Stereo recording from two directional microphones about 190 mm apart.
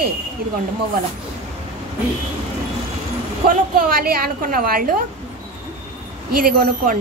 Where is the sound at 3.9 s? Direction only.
50° right (ahead or behind).